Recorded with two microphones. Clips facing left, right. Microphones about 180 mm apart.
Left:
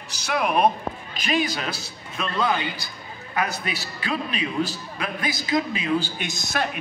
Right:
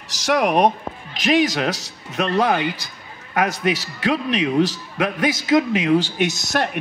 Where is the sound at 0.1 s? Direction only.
85° right; by 2.8 s 70° right (ahead or behind).